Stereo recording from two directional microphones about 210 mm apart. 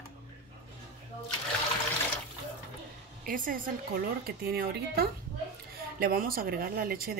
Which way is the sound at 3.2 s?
40° right (ahead or behind).